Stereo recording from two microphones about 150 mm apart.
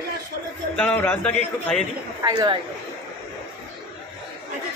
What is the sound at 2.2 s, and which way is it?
Speech, 30° right (ahead or behind).